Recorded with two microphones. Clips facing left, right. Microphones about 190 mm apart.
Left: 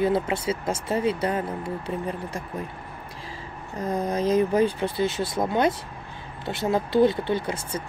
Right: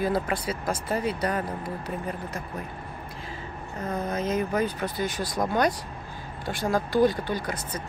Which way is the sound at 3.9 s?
35° left (ahead or behind).